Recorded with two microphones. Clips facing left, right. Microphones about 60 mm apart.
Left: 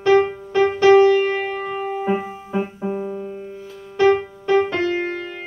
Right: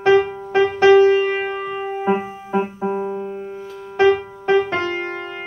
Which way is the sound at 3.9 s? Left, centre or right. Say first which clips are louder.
Right 1 dB; right.